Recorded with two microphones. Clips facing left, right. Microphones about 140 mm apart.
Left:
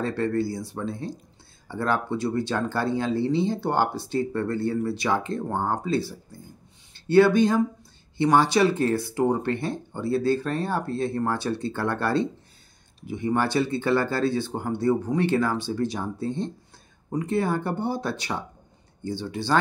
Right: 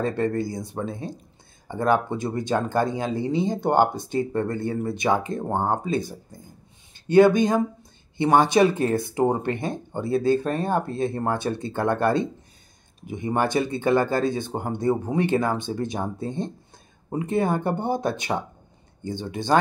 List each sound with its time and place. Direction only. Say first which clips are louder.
0.0 s speech: right 1 dB; 20° right (ahead or behind)